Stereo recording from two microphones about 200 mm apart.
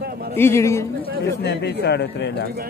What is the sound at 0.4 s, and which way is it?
Speech, 15° left (ahead or behind).